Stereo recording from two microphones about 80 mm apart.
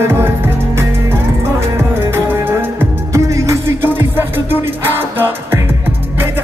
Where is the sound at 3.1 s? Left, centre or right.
Right.